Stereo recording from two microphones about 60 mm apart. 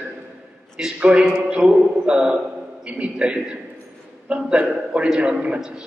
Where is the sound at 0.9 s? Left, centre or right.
Centre.